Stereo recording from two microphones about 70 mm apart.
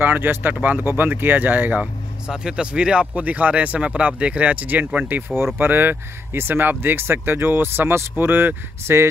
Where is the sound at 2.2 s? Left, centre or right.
Centre.